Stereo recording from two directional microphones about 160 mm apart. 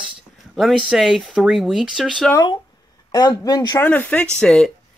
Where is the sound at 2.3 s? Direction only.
25° left (ahead or behind).